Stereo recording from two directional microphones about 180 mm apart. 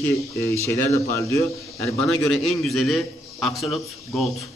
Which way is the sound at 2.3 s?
Centre (ahead or behind).